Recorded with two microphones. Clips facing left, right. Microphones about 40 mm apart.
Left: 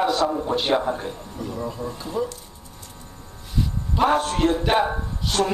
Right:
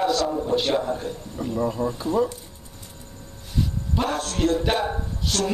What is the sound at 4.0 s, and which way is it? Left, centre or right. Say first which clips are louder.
Speech: left 5 dB; left.